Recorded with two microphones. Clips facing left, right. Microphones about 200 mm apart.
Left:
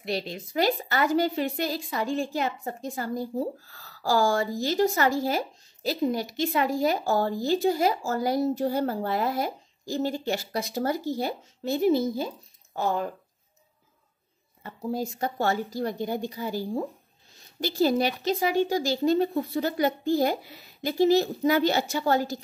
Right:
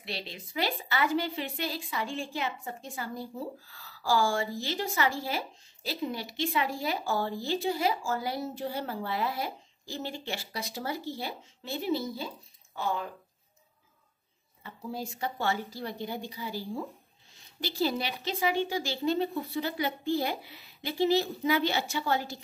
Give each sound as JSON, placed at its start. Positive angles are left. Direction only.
{"t": 0.0, "sound": "a woman's voice", "side_deg": 45}
{"t": 14.6, "sound": "a woman's voice", "side_deg": 45}